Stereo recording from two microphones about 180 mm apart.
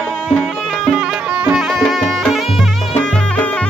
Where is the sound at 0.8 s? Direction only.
Centre (ahead or behind).